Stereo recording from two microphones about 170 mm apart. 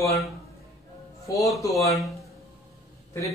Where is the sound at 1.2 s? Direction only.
20° left (ahead or behind).